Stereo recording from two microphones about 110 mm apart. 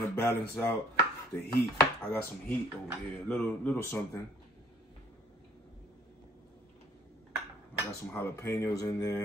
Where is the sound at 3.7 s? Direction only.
25° left (ahead or behind).